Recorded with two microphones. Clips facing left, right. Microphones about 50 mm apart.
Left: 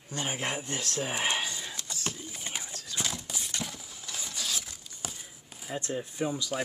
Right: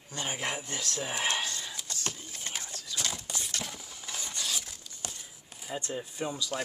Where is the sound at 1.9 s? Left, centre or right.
Centre.